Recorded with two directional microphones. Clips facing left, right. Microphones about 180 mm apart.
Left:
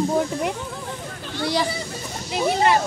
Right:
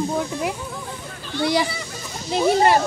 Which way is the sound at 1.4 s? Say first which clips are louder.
Right 3 dB; 15° right (ahead or behind).